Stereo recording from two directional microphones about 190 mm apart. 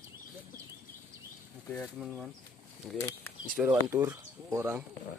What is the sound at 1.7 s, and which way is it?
Speech, centre (ahead or behind).